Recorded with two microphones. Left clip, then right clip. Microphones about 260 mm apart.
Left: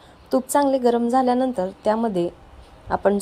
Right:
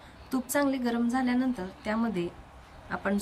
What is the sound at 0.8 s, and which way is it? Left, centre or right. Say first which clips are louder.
A woman's voice: left 11 dB; left.